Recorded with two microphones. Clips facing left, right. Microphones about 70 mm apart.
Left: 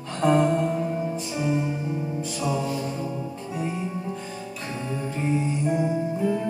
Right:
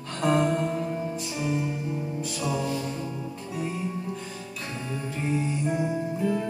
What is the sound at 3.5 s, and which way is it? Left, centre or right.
Music, centre.